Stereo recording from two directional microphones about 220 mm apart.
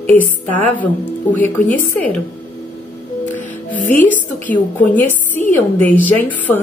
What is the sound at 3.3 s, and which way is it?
Music, 35° left (ahead or behind).